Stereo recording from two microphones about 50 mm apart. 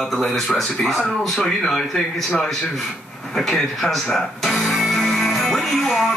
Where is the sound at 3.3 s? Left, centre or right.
Centre.